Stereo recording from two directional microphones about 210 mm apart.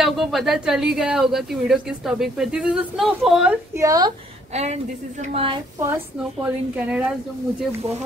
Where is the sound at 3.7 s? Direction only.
15° right (ahead or behind).